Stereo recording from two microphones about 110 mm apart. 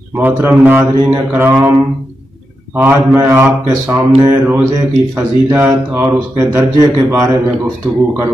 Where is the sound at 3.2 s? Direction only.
30° right (ahead or behind).